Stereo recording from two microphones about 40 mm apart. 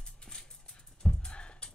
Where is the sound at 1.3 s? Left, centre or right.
Left.